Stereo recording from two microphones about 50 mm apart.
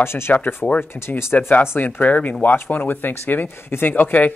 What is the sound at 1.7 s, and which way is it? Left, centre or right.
Speech, left.